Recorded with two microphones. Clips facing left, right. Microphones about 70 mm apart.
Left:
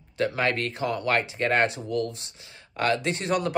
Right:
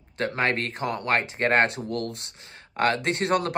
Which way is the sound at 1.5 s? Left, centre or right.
Right.